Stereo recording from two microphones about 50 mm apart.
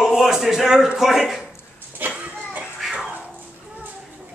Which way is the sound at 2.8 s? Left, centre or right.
Centre.